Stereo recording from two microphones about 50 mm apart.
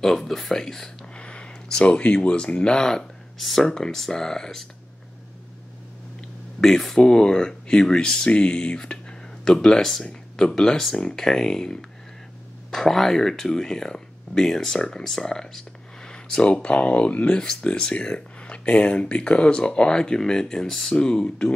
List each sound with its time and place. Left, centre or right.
0.2 s speech: centre
1.1 s speech: left
6.6 s speech: centre; by 17.3 s left
17.3 s speech: centre